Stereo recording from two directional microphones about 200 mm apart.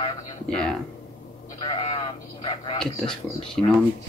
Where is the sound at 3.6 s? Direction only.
5° left (ahead or behind).